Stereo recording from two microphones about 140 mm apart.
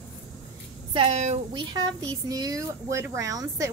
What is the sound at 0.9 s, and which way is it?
Speech, 50° right (ahead or behind).